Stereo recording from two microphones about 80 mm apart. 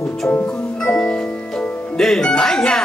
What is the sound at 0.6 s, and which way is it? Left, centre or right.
Music, centre.